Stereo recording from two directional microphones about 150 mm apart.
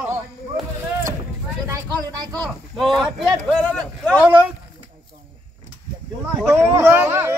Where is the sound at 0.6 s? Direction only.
Centre (ahead or behind).